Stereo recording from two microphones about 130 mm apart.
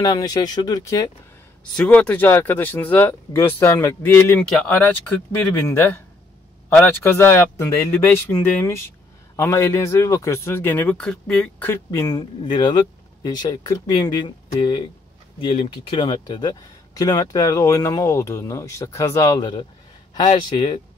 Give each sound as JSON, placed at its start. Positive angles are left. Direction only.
{"t": 0.0, "sound": "speech", "side_deg": 30}
{"t": 1.8, "sound": "speech", "side_deg": 10}
{"t": 11.7, "sound": "speech", "side_deg": 25}
{"t": 12.2, "sound": "speech", "side_deg": 35}